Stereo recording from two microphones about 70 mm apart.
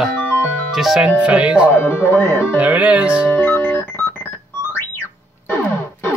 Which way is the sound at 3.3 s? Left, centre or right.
Left.